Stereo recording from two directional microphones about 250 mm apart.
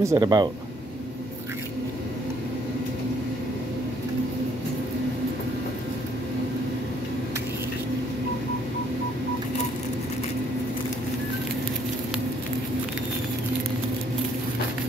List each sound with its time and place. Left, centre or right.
0.0 s speech: centre